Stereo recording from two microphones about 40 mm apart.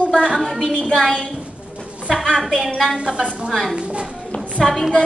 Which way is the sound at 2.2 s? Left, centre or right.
Centre.